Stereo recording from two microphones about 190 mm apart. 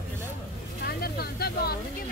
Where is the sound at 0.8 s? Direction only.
55° left (ahead or behind).